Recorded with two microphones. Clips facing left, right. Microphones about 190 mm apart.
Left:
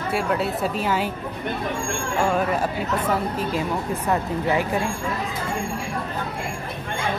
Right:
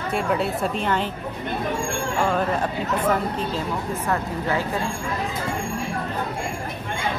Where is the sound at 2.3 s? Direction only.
5° left (ahead or behind).